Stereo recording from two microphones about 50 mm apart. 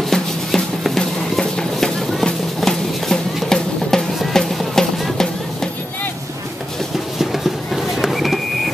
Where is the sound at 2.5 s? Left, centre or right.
Centre.